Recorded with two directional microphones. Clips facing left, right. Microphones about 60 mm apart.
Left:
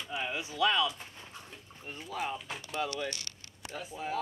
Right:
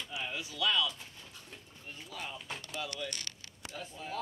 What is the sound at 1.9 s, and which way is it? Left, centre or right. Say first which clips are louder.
Speech: left 5 dB; left.